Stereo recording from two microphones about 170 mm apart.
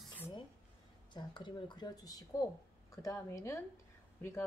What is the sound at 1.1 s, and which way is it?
A woman's voice, 25° left (ahead or behind).